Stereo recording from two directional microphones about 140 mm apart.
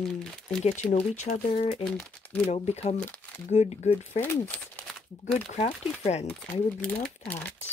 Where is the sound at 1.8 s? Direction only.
5° left (ahead or behind).